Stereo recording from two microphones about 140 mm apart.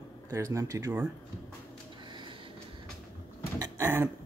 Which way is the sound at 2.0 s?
35° right (ahead or behind).